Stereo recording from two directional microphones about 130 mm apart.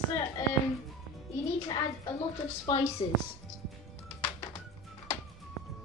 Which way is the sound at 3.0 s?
35° left (ahead or behind).